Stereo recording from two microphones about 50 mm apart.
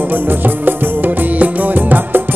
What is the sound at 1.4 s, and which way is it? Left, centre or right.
Music, right.